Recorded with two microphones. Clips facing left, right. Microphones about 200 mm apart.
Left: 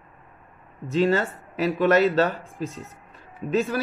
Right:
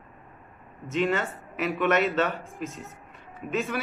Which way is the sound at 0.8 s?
35° left (ahead or behind).